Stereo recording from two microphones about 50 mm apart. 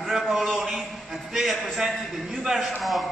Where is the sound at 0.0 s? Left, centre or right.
Centre.